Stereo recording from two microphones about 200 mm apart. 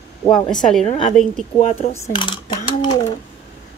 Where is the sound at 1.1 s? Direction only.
Centre (ahead or behind).